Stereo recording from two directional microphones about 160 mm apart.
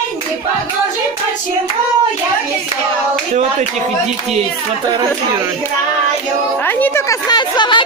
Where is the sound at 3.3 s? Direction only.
50° right (ahead or behind).